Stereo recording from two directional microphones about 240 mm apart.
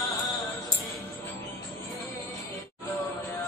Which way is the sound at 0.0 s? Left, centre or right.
Centre.